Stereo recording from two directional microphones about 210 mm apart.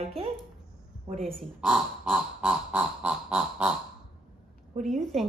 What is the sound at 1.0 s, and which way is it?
Speech, 30° right (ahead or behind).